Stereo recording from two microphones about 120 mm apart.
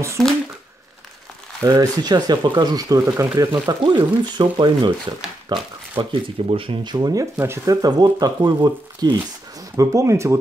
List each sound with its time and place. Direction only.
1.6 s speech: 30° right (ahead or behind)